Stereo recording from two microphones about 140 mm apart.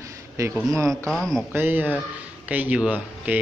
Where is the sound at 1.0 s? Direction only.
5° left (ahead or behind).